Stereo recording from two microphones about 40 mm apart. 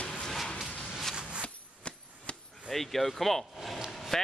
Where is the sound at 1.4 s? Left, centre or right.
Left.